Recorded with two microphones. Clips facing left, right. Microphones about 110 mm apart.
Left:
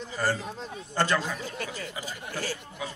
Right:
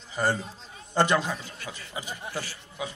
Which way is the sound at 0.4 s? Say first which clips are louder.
Left 5 dB; 70° left (ahead or behind).